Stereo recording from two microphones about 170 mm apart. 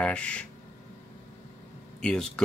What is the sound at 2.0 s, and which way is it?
Speech, 5° left (ahead or behind).